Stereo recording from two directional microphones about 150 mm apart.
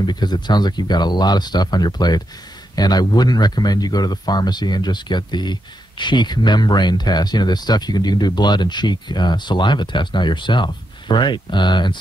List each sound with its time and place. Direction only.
0.0 s speech: 30° left (ahead or behind)